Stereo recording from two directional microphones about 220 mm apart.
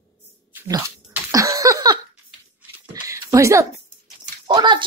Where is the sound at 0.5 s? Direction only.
15° right (ahead or behind).